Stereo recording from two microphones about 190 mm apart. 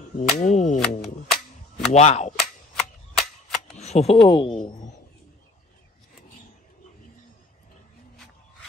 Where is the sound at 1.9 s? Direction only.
35° left (ahead or behind).